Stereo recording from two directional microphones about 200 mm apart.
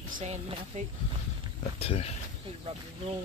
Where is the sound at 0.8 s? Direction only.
35° right (ahead or behind).